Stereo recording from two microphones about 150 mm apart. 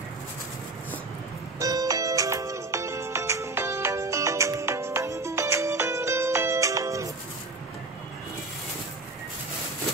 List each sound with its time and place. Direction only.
1.6 s music: 25° right (ahead or behind)